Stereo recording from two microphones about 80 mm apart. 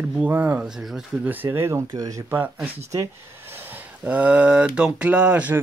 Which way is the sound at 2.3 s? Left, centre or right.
Right.